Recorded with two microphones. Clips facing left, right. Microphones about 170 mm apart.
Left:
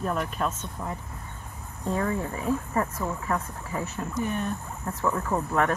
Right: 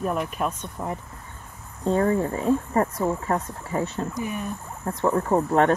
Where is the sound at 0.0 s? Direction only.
10° right (ahead or behind).